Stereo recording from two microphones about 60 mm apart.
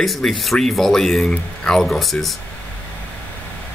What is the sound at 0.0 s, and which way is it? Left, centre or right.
Speech, centre.